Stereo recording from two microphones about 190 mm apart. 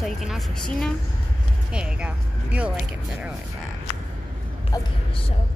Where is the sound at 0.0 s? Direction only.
Centre (ahead or behind).